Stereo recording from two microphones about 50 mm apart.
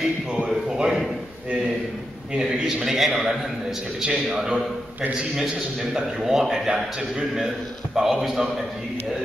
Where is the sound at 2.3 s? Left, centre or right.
Centre.